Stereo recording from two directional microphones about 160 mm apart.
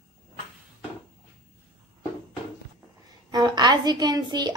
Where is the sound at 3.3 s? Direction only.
25° right (ahead or behind).